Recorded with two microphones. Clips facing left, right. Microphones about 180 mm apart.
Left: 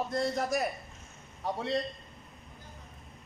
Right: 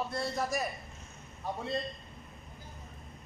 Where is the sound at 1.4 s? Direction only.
75° left (ahead or behind).